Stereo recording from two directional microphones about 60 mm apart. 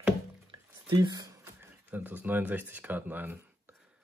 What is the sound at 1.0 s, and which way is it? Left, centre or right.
Speech, right.